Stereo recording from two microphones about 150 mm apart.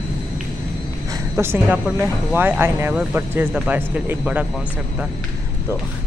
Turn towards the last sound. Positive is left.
turn(degrees=-10)  # may be behind; listen again after turning